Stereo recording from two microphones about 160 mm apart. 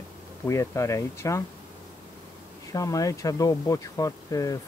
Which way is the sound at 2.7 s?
20° left (ahead or behind).